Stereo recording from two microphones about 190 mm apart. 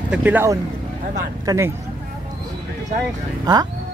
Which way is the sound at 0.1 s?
10° right (ahead or behind).